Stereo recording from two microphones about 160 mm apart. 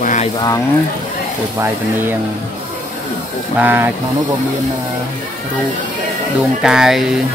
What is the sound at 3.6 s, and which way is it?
Speech, 10° right (ahead or behind).